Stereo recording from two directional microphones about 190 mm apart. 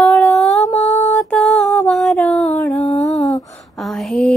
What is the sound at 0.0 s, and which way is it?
Humming, 5° left (ahead or behind).